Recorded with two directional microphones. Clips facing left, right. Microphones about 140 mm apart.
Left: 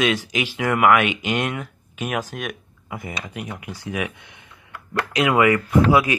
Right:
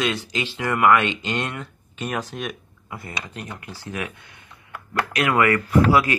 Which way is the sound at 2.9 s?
15° left (ahead or behind).